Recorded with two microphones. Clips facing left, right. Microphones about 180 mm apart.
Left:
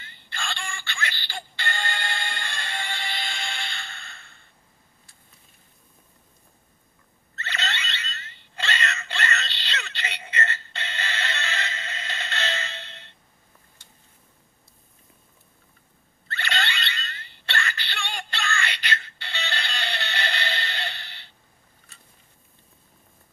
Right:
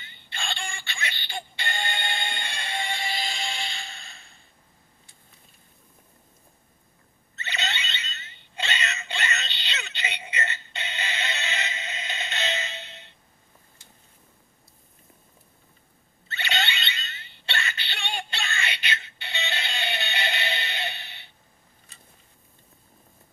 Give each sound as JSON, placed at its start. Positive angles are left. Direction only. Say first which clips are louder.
{"t": 0.0, "sound": "music", "louder": "left 1 dB", "side_deg": -20}
{"t": 3.3, "sound": "music", "louder": "right 1 dB", "side_deg": 60}
{"t": 7.4, "sound": "alarm", "louder": "left 1 dB", "side_deg": -15}
{"t": 16.3, "sound": "a sound", "louder": "even", "side_deg": -20}